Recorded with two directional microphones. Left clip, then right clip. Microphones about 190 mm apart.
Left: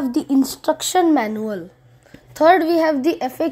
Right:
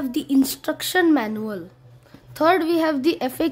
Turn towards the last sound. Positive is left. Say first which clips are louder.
# left 2 dB
turn(degrees=-10)  # may be behind; listen again after turning